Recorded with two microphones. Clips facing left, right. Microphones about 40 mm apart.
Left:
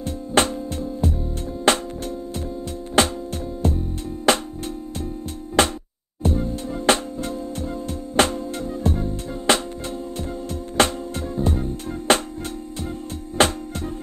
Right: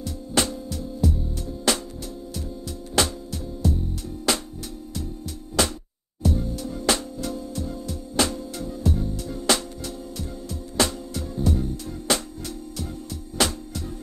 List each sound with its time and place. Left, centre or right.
0.0 s music: left
3.0 s music: left
5.6 s music: left
10.8 s music: left
13.4 s music: left